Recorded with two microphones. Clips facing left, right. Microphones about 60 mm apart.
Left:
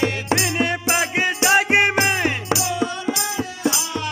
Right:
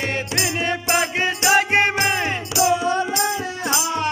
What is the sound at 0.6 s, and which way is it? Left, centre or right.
Music, centre.